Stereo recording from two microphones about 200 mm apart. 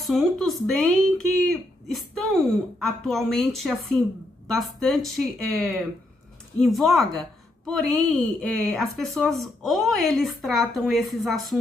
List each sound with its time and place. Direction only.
0.0 s a woman's voice: centre (ahead or behind)